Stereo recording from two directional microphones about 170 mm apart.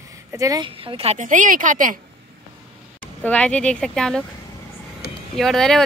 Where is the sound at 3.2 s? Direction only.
10° left (ahead or behind).